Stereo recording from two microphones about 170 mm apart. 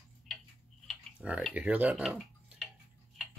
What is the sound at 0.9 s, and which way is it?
Speech, 10° right (ahead or behind).